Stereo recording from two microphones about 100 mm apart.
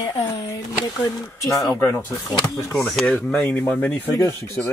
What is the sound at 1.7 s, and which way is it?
Speech, 25° left (ahead or behind).